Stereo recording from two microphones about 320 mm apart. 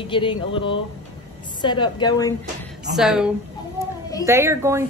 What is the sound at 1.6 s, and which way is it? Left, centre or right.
Speech, centre.